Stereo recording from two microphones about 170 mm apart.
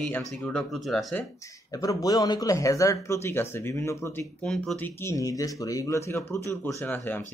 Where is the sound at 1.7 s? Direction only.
20° left (ahead or behind).